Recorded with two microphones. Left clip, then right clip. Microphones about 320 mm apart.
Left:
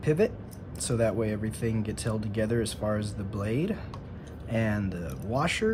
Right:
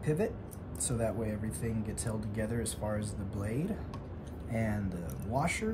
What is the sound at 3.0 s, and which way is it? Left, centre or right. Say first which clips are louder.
Speech: left 5 dB; centre.